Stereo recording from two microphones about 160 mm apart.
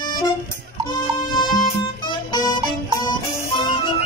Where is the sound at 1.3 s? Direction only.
30° left (ahead or behind).